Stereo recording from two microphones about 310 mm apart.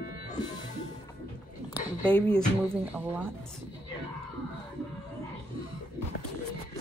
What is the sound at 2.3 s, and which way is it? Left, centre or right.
A woman's voice, centre.